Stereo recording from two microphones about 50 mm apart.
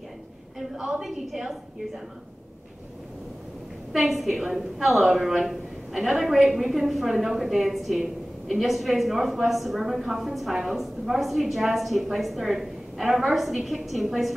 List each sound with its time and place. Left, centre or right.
1.0 s a woman's voice: centre
3.9 s a woman's voice: centre